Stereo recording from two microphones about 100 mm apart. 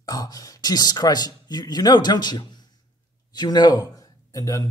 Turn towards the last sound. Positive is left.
turn(degrees=35)  # may be behind; listen again after turning